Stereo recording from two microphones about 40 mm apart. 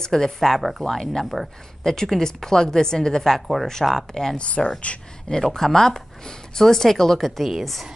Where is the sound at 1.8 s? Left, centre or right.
Centre.